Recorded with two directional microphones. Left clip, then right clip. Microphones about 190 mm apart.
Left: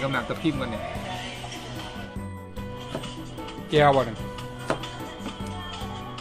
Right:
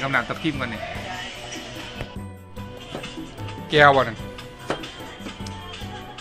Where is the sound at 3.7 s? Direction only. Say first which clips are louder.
Right 4 dB; 5° left (ahead or behind).